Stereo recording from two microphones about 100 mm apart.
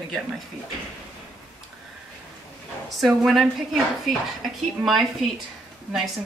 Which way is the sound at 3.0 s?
Centre (ahead or behind).